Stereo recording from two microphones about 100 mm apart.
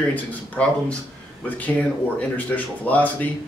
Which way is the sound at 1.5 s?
15° left (ahead or behind).